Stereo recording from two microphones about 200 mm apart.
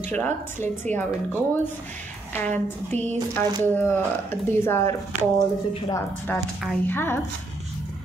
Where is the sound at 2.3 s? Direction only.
10° left (ahead or behind).